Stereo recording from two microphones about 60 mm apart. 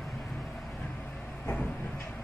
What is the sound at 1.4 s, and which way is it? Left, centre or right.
Vehicle, left.